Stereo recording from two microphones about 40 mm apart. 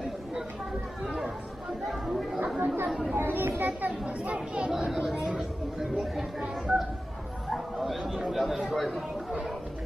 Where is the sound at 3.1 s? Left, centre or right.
Right.